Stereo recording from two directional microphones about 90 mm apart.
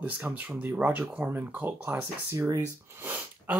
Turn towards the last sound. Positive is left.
turn(degrees=-20)  # may be behind; listen again after turning